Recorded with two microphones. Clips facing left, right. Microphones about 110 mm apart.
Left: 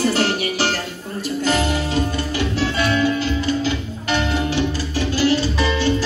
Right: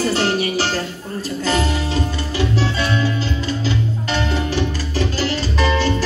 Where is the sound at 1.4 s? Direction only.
35° right (ahead or behind).